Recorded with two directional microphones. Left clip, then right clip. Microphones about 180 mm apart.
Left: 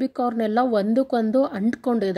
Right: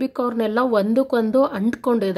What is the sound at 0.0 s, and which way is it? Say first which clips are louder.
Speech: right 2 dB; 15° left (ahead or behind).